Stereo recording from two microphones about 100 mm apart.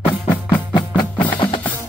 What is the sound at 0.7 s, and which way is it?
Music, 55° left (ahead or behind).